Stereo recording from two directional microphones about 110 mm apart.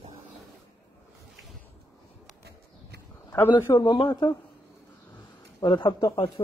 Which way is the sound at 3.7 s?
40° left (ahead or behind).